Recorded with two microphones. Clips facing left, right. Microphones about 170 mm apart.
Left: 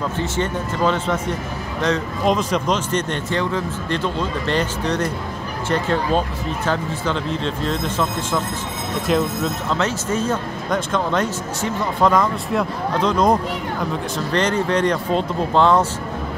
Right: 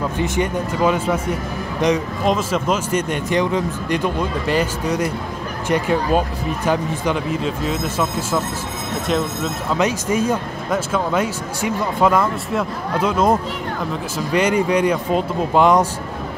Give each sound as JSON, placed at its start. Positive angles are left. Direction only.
{"t": 0.2, "sound": "speech", "side_deg": -10}
{"t": 2.2, "sound": "speech", "side_deg": -5}
{"t": 9.8, "sound": "speech", "side_deg": -15}